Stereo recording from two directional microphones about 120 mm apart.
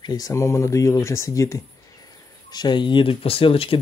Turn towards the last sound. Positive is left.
turn(degrees=50)  # may be behind; listen again after turning